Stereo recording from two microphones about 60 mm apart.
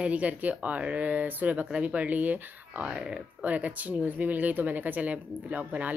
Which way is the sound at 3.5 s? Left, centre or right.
Right.